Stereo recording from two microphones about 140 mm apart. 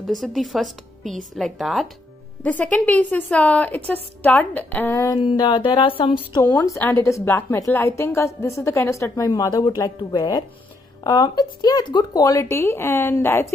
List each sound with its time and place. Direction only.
0.0 s a woman's voice: centre (ahead or behind)
2.4 s a woman's voice: 10° left (ahead or behind)